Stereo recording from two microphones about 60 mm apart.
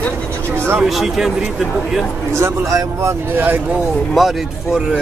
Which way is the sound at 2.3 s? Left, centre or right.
Right.